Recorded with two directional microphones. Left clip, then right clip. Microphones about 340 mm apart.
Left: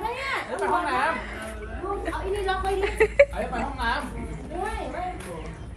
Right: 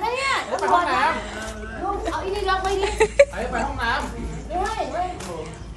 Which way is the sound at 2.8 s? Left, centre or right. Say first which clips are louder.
Right 2 dB; centre.